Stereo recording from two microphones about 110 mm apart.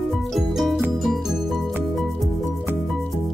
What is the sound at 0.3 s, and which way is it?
Music, centre (ahead or behind).